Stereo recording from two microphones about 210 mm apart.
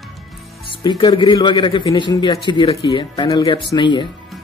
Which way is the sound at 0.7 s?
20° left (ahead or behind).